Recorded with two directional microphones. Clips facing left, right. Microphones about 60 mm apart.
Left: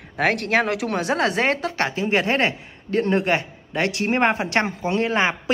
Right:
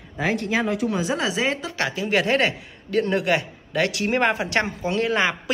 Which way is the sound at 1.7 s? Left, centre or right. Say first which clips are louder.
Left 2 dB; left.